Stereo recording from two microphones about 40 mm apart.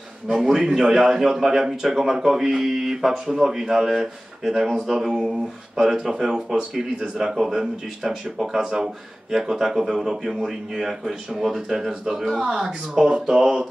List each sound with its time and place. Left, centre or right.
0.3 s a man's voice: centre